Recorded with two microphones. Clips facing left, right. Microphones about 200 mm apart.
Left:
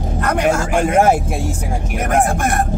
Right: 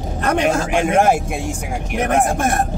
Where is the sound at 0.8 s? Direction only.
Centre (ahead or behind).